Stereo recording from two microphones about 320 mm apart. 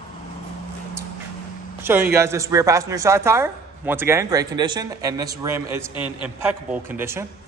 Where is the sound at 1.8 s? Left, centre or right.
Centre.